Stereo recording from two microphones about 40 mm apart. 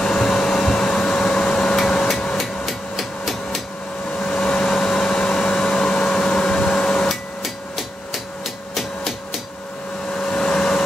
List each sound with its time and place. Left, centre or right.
0.0 s vacuum cleaner: centre
2.3 s hammer: centre
4.1 s hair dryer: centre
7.1 s hammer: centre
10.1 s a sound: left